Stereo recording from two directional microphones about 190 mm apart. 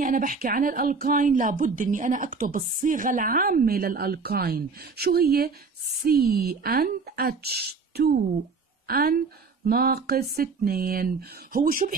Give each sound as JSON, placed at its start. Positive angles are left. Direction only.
{"t": 0.0, "sound": "a woman's voice", "side_deg": -45}